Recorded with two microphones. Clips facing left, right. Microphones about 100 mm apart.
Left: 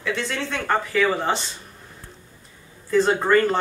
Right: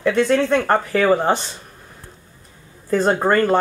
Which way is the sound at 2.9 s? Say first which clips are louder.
Right 2 dB; 50° right (ahead or behind).